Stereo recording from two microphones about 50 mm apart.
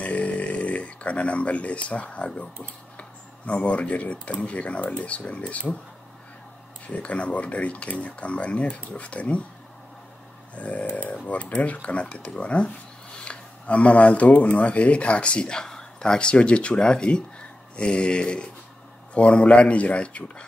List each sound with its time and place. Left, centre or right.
0.0 s snoring: left
3.0 s speech: left
6.9 s speech: left
10.5 s speech: left